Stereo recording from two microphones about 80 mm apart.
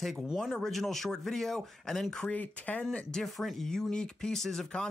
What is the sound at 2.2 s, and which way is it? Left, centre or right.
Speech, left.